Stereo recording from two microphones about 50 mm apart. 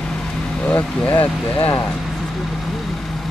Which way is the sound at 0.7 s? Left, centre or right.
Left.